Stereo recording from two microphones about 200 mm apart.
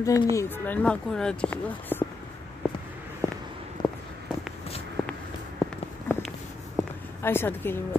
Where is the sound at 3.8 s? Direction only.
20° left (ahead or behind).